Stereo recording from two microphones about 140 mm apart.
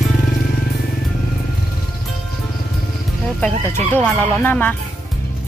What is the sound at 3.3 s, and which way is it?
Speech, 10° left (ahead or behind).